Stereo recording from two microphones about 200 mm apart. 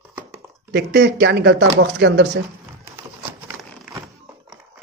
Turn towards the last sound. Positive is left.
turn(degrees=-10)  # may be behind; listen again after turning